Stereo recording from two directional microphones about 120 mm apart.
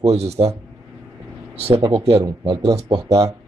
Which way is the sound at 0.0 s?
60° right (ahead or behind).